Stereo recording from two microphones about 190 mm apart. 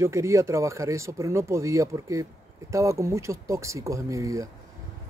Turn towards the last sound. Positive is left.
turn(degrees=-15)  # may be behind; listen again after turning